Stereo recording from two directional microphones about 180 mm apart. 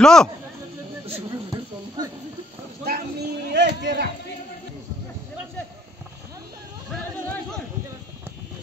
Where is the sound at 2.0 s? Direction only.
20° right (ahead or behind).